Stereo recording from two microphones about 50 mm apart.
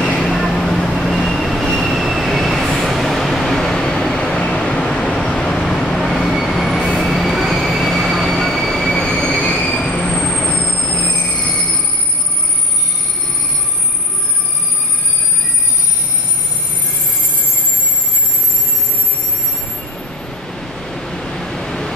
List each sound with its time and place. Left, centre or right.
0.2 s train: centre
11.1 s train wheels squealing: left
20.8 s waves: centre